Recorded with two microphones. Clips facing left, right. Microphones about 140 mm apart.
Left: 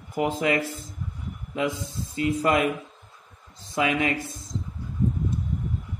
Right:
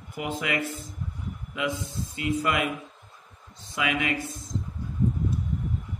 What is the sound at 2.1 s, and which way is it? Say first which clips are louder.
Speech: left 4 dB; 35° left (ahead or behind).